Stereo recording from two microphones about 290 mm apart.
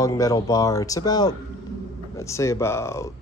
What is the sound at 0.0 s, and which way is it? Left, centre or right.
Speech, centre.